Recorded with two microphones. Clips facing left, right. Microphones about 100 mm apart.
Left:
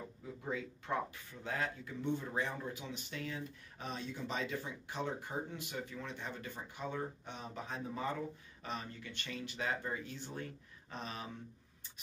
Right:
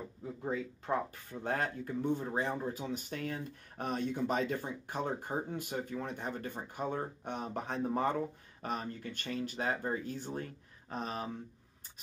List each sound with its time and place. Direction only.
0.4 s speech: 40° right (ahead or behind); by 8.2 s 55° right (ahead or behind)
8.6 s speech: 45° right (ahead or behind)